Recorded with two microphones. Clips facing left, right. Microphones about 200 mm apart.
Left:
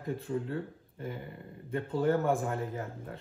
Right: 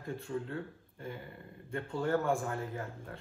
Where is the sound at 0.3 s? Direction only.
30° left (ahead or behind).